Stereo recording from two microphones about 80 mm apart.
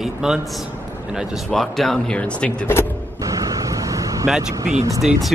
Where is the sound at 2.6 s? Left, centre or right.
Left.